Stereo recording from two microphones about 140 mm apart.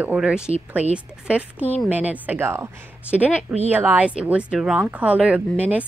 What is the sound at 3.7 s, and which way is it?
Speech, 10° right (ahead or behind).